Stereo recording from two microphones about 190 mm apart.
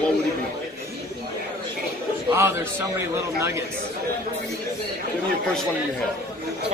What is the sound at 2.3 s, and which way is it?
A man's voice, 15° right (ahead or behind).